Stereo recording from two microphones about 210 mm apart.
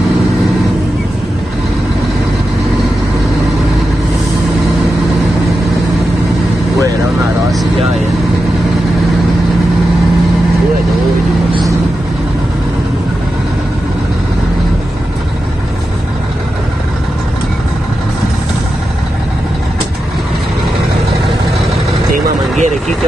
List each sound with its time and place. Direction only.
22.1 s vehicle: 35° right (ahead or behind)